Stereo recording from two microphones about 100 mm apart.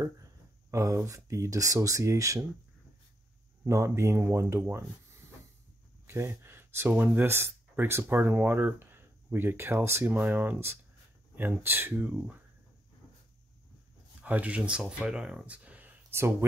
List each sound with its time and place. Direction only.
0.0 s speech: 35° right (ahead or behind)
3.6 s speech: 30° right (ahead or behind)
14.2 s speech: 15° right (ahead or behind)